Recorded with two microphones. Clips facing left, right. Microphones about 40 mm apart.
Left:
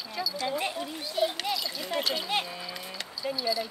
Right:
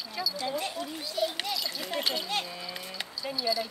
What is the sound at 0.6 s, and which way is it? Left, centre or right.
Speech, centre.